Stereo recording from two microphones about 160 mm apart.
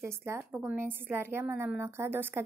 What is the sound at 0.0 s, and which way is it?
A woman's voice, 15° right (ahead or behind).